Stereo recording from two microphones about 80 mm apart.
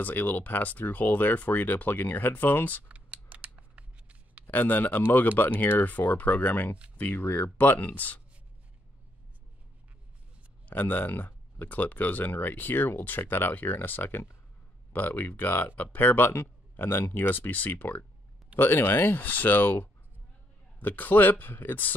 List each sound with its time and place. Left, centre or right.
0.0 s speech: left
2.9 s scissors: centre
4.5 s speech: left
10.7 s speech: left